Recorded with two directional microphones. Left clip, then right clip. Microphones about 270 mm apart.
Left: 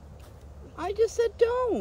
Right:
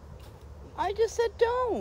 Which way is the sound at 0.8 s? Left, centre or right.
Left.